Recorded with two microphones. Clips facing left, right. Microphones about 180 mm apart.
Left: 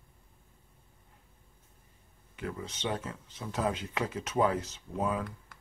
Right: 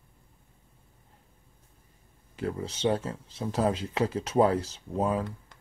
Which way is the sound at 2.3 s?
30° right (ahead or behind).